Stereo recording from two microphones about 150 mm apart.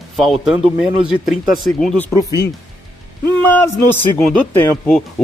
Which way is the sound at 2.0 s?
15° left (ahead or behind).